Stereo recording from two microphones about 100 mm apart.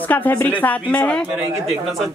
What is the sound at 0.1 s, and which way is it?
Speech, 15° left (ahead or behind).